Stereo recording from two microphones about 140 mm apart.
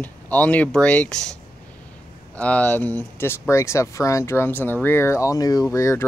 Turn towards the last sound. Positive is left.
turn(degrees=20)  # may be behind; listen again after turning